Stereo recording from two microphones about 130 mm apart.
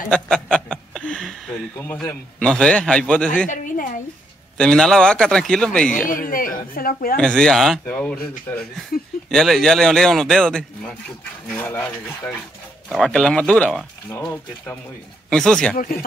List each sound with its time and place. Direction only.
0.1 s speech: 5° left (ahead or behind)
2.4 s speech: 10° left (ahead or behind)
3.4 s a sound: 85° left
4.6 s a man's voice: 5° left (ahead or behind)
6.0 s a woman's voice: 90° left
7.2 s a man's voice: 5° left (ahead or behind)
11.5 s speech: 15° left (ahead or behind)
12.9 s a man's voice: 5° left (ahead or behind)
15.2 s speech: 5° left (ahead or behind)